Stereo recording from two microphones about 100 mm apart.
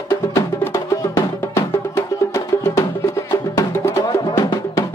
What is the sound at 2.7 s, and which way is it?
Music, 30° left (ahead or behind).